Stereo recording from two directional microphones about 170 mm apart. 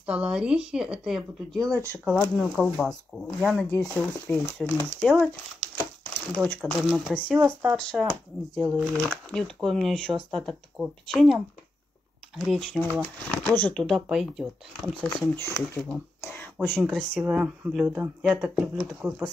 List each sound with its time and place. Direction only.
0.0 s speech: 5° right (ahead or behind)
1.6 s speech: 20° right (ahead or behind)
2.0 s speech: centre (ahead or behind)
6.3 s speech: 10° left (ahead or behind)
7.3 s speech: 10° right (ahead or behind)
7.7 s speech: 5° left (ahead or behind)
12.9 s speech: 10° left (ahead or behind)
15.2 s speech: 15° left (ahead or behind)
16.2 s a sound: 10° left (ahead or behind)
16.8 s speech: 5° right (ahead or behind)